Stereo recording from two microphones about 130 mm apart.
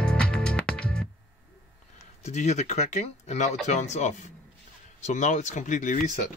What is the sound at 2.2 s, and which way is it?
Speech, 60° left (ahead or behind).